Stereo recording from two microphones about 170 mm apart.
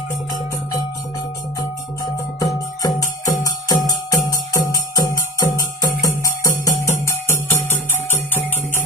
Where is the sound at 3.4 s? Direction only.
20° left (ahead or behind).